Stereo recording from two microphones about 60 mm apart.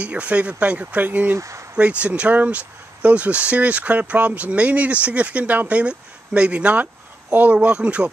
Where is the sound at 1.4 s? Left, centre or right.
Right.